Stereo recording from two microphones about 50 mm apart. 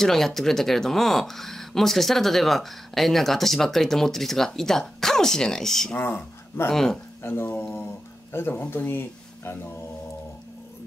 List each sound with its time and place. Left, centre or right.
0.0 s speech: centre
5.9 s speech: left
6.7 s speech: centre
7.2 s speech: left